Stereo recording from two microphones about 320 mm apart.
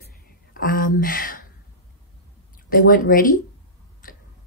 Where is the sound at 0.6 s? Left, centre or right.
Left.